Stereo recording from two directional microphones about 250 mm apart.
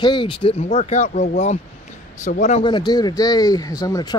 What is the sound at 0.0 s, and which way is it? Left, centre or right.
Speech, centre.